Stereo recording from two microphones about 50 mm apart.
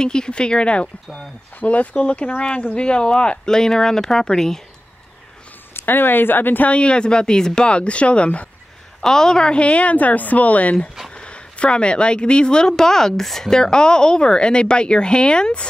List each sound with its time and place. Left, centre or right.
0.0 s speech: centre
5.7 s speech: left
6.7 s speech: left
9.0 s speech: centre